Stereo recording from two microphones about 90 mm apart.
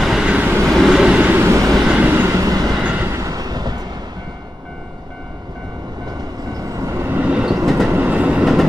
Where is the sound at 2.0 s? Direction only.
25° right (ahead or behind).